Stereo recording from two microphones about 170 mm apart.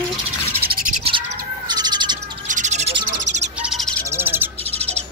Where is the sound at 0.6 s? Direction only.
60° right (ahead or behind).